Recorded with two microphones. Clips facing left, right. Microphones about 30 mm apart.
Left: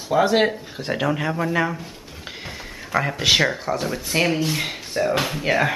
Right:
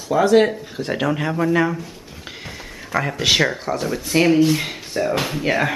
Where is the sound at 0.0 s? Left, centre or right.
Left.